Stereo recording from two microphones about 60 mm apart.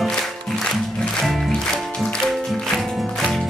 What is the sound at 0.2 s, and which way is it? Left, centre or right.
Music, centre.